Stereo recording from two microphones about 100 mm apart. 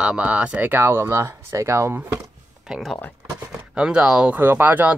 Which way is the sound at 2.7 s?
Centre (ahead or behind).